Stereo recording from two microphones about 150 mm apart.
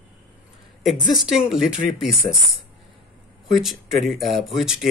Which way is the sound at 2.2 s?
25° left (ahead or behind).